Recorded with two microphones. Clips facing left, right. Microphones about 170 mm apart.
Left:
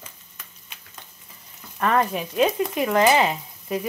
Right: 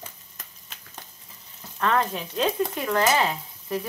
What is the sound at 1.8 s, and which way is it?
Frying, 10° left (ahead or behind).